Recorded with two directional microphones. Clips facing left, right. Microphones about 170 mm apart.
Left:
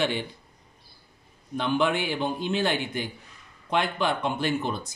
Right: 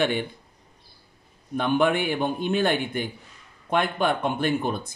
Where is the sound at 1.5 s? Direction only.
55° right (ahead or behind).